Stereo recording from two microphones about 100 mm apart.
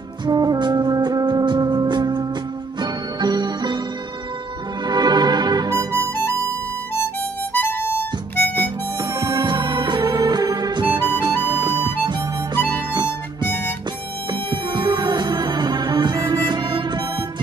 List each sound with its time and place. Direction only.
0.2 s music: 45° right (ahead or behind)
4.8 s music: 45° right (ahead or behind)
5.7 s music: 35° right (ahead or behind)
7.5 s harmonica: 20° left (ahead or behind)
9.0 s music: 40° right (ahead or behind)
12.9 s harmonica: 50° right (ahead or behind)
14.3 s music: 50° right (ahead or behind)